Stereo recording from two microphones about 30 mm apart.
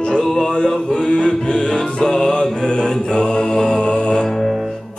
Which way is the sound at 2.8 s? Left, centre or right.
Left.